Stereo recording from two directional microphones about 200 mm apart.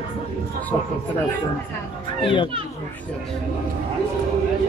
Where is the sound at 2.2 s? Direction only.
25° left (ahead or behind).